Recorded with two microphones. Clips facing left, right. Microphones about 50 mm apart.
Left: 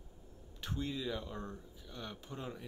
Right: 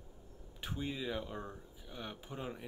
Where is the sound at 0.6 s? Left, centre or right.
Centre.